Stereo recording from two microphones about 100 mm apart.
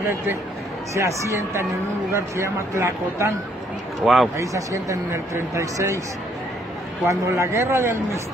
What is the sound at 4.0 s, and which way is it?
Speech, centre (ahead or behind).